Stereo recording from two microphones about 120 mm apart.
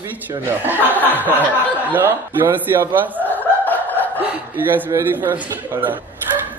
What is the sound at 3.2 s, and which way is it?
Snicker, 15° left (ahead or behind).